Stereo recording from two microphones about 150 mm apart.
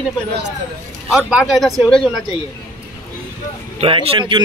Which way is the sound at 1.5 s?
Centre (ahead or behind).